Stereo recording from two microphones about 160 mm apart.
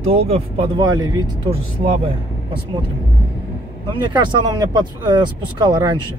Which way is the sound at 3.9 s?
25° right (ahead or behind).